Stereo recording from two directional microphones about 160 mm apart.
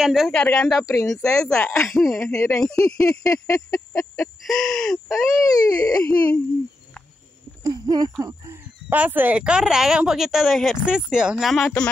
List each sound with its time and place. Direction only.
0.0 s a woman's voice: centre (ahead or behind)
0.8 s speech: 20° left (ahead or behind)
1.2 s a woman's voice: 5° left (ahead or behind)
2.3 s speech: 20° left (ahead or behind)
2.6 s a woman's voice: 5° left (ahead or behind)
3.0 s speech: 20° left (ahead or behind)
4.5 s a woman's voice: 5° left (ahead or behind)
5.3 s speech: 20° left (ahead or behind)
6.0 s speech: 10° left (ahead or behind)
7.6 s a sound: 25° right (ahead or behind)
8.8 s a woman's voice: 10° right (ahead or behind)